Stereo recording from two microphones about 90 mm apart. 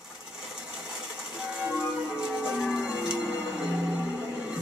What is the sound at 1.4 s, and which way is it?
Music, 10° right (ahead or behind).